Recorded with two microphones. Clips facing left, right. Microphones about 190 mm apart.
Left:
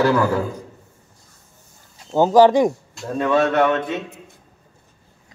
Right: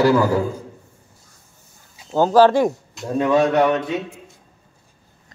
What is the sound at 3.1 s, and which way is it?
A man's voice, 15° right (ahead or behind).